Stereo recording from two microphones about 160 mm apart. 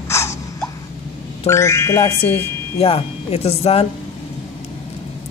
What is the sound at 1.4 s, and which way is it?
Speech, 20° left (ahead or behind).